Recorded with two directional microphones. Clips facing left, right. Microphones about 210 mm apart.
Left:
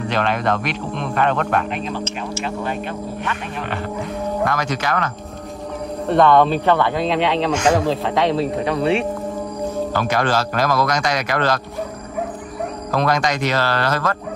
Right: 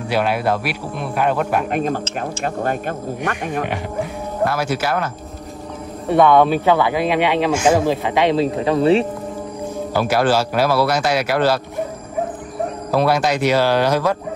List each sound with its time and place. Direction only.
0.1 s a man's voice: 10° right (ahead or behind)
1.7 s speech: 50° right (ahead or behind)
3.6 s a man's voice: 15° right (ahead or behind)
9.9 s a man's voice: 5° right (ahead or behind)
12.9 s a man's voice: 10° right (ahead or behind)